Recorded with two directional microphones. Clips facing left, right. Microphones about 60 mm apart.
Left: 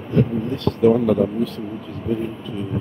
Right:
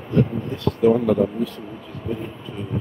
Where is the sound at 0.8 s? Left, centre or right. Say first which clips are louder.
Left 1 dB; centre.